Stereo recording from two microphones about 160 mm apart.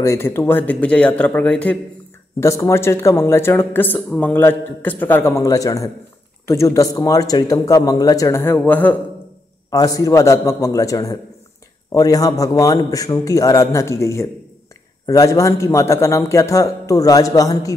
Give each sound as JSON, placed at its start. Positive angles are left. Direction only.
{"t": 0.0, "sound": "a man's voice", "side_deg": 15}
{"t": 9.7, "sound": "a man's voice", "side_deg": 20}